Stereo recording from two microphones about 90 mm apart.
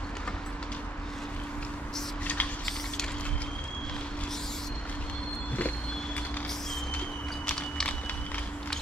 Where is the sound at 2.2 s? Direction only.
15° left (ahead or behind).